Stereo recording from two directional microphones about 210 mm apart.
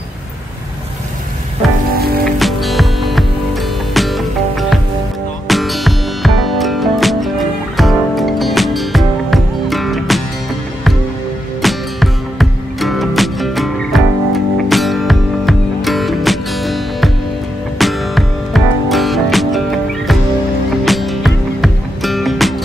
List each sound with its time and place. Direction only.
2.3 s music: centre (ahead or behind)
11.6 s music: centre (ahead or behind)